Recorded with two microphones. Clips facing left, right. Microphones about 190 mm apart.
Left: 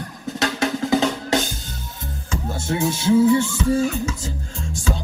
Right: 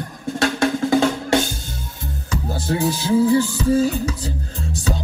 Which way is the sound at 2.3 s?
35° right (ahead or behind).